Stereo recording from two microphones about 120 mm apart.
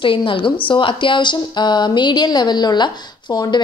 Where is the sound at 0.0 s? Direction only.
45° left (ahead or behind).